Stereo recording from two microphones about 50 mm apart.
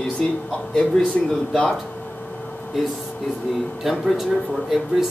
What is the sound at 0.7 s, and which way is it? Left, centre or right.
Speech, left.